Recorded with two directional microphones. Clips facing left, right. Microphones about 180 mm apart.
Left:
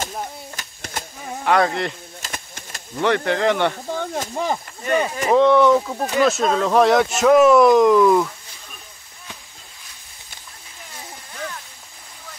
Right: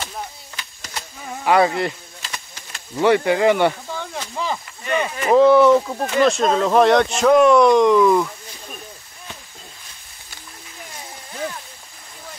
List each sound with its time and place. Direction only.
0.6 s a sound: 50° left (ahead or behind)
1.4 s speech: 5° right (ahead or behind)
2.2 s a sound: 45° left (ahead or behind)
3.0 s speech: 10° right (ahead or behind)
3.9 s snake: 50° left (ahead or behind)
4.4 s speech: 45° left (ahead or behind)
5.3 s speech: 5° right (ahead or behind)